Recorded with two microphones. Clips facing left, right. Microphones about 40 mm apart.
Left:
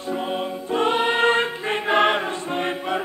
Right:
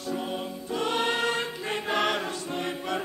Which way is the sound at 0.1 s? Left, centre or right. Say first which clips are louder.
Left 7 dB; left.